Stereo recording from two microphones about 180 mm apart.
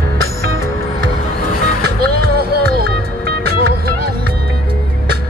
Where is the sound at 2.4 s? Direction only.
60° right (ahead or behind).